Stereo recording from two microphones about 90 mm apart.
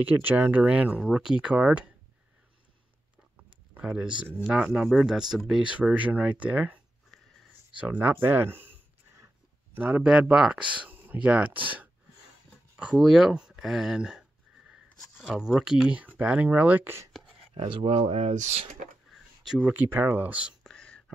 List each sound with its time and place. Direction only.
0.0 s speech: 20° right (ahead or behind)
3.7 s speech: 10° right (ahead or behind)
7.7 s a sound: 15° right (ahead or behind)
9.8 s speech: 20° right (ahead or behind)
12.7 s speech: 15° right (ahead or behind)
13.0 s speech: 5° right (ahead or behind); by 17.1 s 25° right (ahead or behind)
17.6 s speech: 65° right (ahead or behind)
19.1 s a sound: 5° right (ahead or behind)
19.7 s speech: 25° right (ahead or behind)
20.6 s whispering: 10° left (ahead or behind)